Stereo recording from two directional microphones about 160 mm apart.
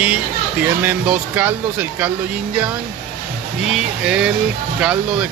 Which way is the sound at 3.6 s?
5° right (ahead or behind).